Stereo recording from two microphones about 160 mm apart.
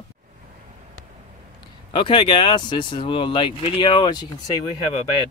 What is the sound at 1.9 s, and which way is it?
Speech, 30° left (ahead or behind).